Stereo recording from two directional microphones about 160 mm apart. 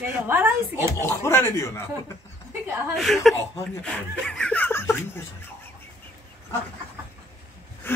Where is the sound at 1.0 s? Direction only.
15° left (ahead or behind).